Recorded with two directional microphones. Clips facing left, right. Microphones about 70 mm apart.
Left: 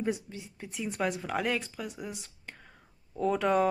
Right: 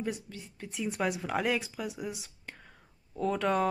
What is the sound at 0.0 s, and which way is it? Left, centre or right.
Speech, left.